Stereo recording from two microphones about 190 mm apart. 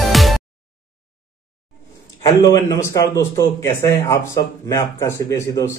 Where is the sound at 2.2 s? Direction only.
20° left (ahead or behind).